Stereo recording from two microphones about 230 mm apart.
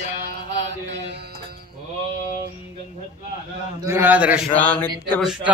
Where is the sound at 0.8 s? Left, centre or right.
Right.